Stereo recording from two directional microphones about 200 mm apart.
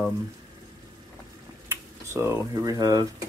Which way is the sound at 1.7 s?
15° right (ahead or behind).